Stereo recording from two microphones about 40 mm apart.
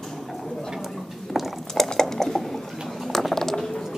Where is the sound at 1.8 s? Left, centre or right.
Centre.